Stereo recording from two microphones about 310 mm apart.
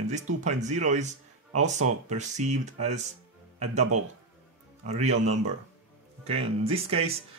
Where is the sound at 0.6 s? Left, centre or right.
Right.